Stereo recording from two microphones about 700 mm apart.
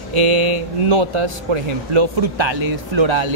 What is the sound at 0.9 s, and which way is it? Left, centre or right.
Speech, right.